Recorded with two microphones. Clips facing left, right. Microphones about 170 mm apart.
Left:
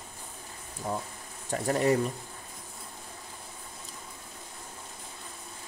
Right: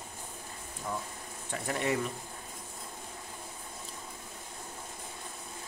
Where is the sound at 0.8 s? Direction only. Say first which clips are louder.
Left 4 dB; 30° left (ahead or behind).